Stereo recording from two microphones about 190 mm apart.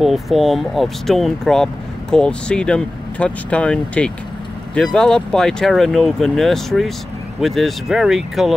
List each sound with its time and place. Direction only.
0.0 s speech: centre (ahead or behind)